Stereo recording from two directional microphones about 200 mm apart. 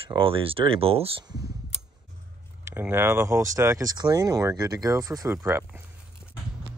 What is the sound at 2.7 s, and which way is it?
Speech, 10° right (ahead or behind).